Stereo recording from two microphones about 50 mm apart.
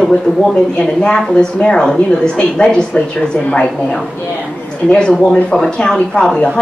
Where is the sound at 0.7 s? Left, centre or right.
Left.